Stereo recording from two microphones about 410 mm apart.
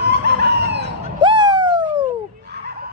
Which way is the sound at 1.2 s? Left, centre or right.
Centre.